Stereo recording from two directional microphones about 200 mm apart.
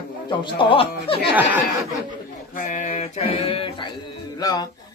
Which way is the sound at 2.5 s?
35° left (ahead or behind).